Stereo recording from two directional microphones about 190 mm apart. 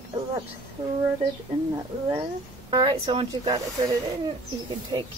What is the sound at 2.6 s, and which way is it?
Speech, 25° right (ahead or behind).